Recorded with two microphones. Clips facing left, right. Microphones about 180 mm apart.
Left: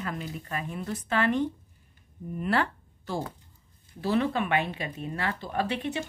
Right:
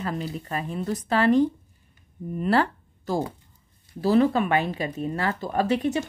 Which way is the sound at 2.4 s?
35° right (ahead or behind).